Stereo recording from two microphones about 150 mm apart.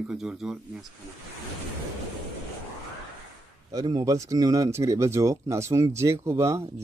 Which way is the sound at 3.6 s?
25° right (ahead or behind).